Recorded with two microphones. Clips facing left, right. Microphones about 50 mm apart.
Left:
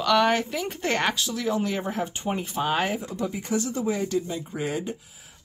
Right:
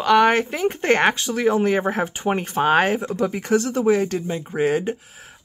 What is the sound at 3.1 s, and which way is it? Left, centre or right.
Speech, right.